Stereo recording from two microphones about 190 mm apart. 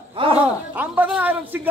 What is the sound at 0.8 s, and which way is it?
Speech, 10° right (ahead or behind).